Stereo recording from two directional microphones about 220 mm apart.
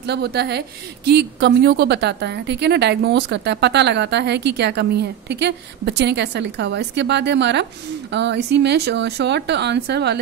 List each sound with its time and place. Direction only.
0.0 s speech: 50° right (ahead or behind)